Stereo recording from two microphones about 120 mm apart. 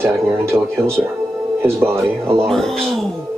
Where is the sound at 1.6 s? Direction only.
20° right (ahead or behind).